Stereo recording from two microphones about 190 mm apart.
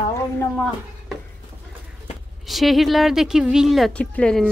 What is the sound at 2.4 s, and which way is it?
A woman's voice, centre (ahead or behind).